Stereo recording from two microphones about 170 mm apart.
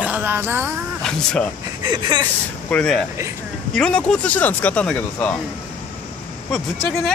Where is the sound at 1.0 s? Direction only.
5° left (ahead or behind).